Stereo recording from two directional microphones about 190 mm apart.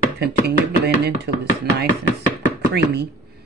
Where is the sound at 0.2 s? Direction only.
60° right (ahead or behind).